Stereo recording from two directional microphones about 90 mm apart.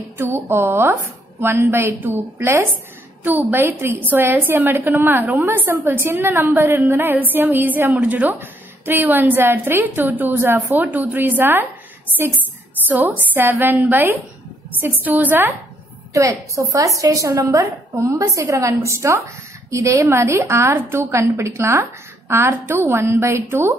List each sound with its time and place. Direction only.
0.2 s a woman's voice: 25° right (ahead or behind)
16.1 s a woman's voice: 35° right (ahead or behind)